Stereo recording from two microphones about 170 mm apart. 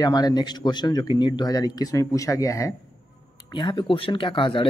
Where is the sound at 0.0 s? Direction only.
25° left (ahead or behind).